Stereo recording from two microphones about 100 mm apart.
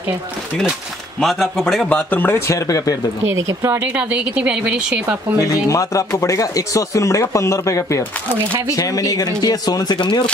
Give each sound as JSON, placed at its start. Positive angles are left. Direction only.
{"t": 1.2, "sound": "a man's voice", "side_deg": 0}
{"t": 1.9, "sound": "speech", "side_deg": 15}
{"t": 3.6, "sound": "speech", "side_deg": -20}
{"t": 5.4, "sound": "speech", "side_deg": 35}